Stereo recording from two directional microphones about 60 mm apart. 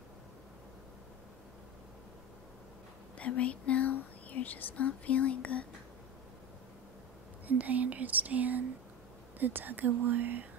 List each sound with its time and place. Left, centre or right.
3.2 s speech: left
7.4 s whispering: right
9.4 s speech: right